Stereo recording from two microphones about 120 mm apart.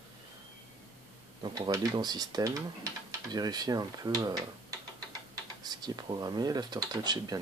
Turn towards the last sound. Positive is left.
turn(degrees=-35)  # may be behind; listen again after turning